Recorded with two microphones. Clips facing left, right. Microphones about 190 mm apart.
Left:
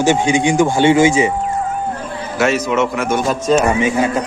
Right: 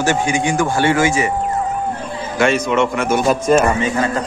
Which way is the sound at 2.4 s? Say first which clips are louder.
Even; 5° left (ahead or behind).